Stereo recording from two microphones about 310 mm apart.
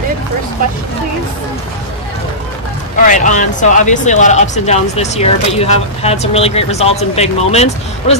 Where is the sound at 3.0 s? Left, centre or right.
Left.